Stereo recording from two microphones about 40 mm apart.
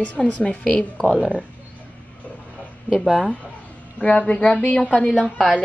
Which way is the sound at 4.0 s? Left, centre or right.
Left.